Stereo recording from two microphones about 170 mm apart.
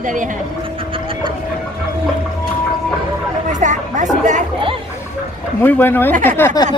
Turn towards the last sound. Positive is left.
turn(degrees=10)  # may be behind; listen again after turning